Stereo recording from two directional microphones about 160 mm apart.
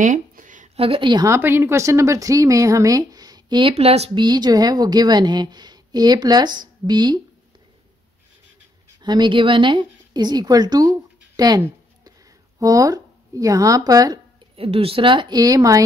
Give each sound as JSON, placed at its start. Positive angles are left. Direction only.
{"t": 0.0, "sound": "a sound", "side_deg": -55}
{"t": 0.7, "sound": "speech", "side_deg": -35}
{"t": 3.7, "sound": "speech", "side_deg": -40}
{"t": 4.2, "sound": "speech", "side_deg": -25}
{"t": 9.0, "sound": "a woman's voice", "side_deg": -25}
{"t": 14.6, "sound": "speech", "side_deg": -35}